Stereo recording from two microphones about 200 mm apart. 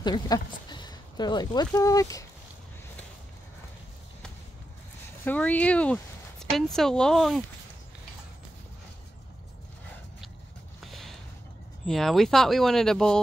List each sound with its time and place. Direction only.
0.0 s speech: 20° left (ahead or behind)
5.2 s speech: 10° left (ahead or behind)
10.8 s a sound: centre (ahead or behind)
11.8 s speech: centre (ahead or behind)